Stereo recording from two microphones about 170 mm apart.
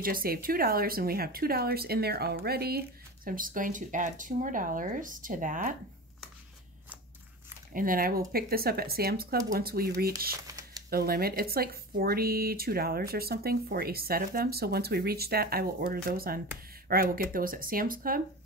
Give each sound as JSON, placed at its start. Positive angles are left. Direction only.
{"t": 0.0, "sound": "speech", "side_deg": -60}
{"t": 3.3, "sound": "speech", "side_deg": -55}
{"t": 7.7, "sound": "speech", "side_deg": -55}
{"t": 10.3, "sound": "typing", "side_deg": -20}
{"t": 10.9, "sound": "speech", "side_deg": -65}